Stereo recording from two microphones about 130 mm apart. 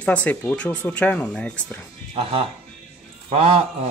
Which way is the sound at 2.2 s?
45° right (ahead or behind).